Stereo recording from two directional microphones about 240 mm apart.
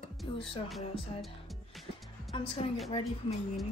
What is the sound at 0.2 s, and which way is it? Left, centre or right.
Speech, centre.